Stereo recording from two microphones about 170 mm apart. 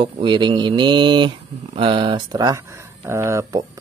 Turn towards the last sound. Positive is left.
turn(degrees=-15)  # may be behind; listen again after turning